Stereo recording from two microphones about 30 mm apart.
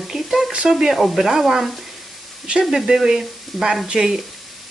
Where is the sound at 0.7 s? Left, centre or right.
Centre.